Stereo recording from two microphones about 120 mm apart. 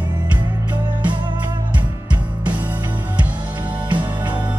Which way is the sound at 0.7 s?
40° right (ahead or behind).